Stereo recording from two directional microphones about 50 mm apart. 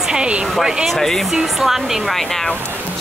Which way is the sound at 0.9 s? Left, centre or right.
Centre.